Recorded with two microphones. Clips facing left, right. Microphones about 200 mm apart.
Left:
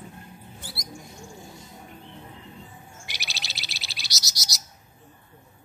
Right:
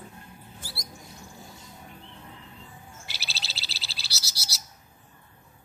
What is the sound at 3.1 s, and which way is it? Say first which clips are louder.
Bird: left 2 dB; 15° left (ahead or behind).